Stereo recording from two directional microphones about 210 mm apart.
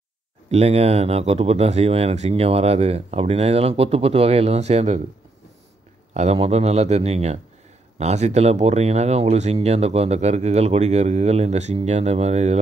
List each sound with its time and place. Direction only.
0.5 s speech: 30° right (ahead or behind)
6.1 s speech: 30° right (ahead or behind)